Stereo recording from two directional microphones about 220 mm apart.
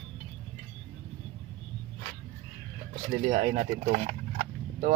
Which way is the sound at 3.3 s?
40° right (ahead or behind).